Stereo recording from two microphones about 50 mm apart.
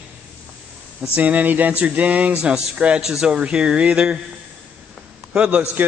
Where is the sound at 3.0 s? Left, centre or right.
Centre.